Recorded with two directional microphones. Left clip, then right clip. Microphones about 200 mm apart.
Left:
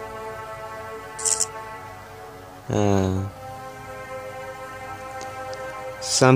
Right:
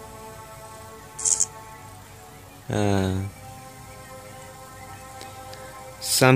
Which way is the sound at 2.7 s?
10° left (ahead or behind).